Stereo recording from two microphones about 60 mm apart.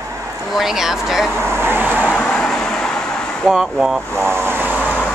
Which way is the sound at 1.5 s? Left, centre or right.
Right.